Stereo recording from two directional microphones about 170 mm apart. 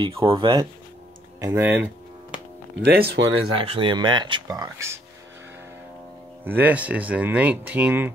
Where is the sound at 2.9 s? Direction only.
70° right (ahead or behind).